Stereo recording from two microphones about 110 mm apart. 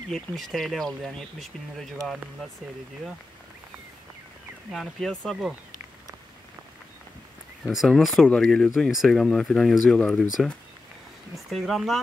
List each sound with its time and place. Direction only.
0.1 s speech: centre (ahead or behind)
4.7 s speech: 5° left (ahead or behind)
7.6 s speech: centre (ahead or behind)